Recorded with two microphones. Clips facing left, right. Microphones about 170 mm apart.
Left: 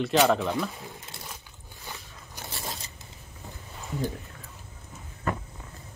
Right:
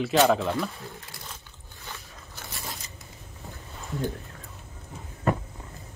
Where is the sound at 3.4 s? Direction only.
Centre (ahead or behind).